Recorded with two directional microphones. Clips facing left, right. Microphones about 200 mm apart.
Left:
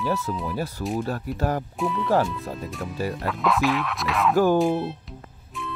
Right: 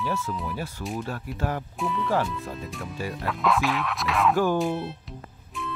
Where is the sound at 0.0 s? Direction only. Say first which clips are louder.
Left 3 dB; 40° left (ahead or behind).